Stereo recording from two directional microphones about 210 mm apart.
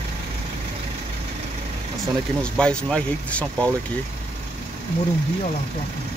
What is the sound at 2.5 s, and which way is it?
Speech, 5° left (ahead or behind).